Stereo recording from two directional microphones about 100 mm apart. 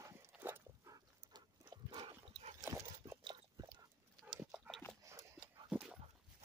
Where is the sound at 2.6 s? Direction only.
30° right (ahead or behind).